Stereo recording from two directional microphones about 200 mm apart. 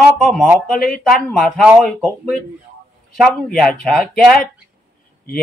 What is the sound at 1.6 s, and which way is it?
Speech, 5° right (ahead or behind).